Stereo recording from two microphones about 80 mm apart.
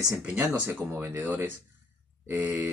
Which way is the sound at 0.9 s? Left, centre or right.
Right.